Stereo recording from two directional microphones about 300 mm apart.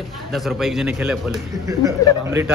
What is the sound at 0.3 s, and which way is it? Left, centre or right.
A man's voice, centre.